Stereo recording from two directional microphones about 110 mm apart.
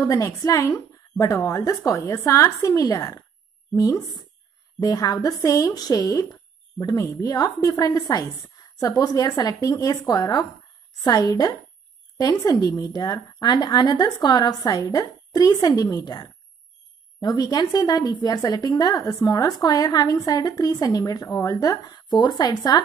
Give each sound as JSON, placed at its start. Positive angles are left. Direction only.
{"t": 0.0, "sound": "speech", "side_deg": 30}